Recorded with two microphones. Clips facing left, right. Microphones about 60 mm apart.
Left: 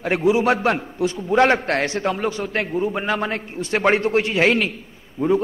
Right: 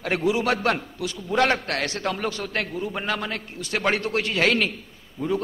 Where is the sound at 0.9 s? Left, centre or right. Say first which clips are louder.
Left 6 dB; left.